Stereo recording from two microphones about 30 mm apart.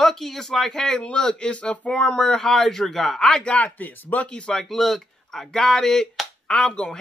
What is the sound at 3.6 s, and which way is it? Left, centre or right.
Speech, left.